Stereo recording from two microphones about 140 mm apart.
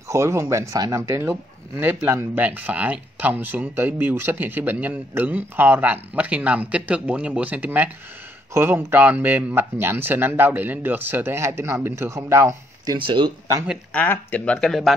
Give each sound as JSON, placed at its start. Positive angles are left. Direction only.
{"t": 0.1, "sound": "speech", "side_deg": -20}
{"t": 12.9, "sound": "speech", "side_deg": -35}
{"t": 13.9, "sound": "speech", "side_deg": 10}